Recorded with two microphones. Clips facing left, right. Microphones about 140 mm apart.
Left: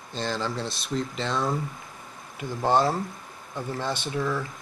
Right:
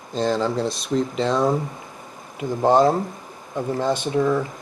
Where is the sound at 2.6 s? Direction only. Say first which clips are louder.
Right 6 dB; 25° right (ahead or behind).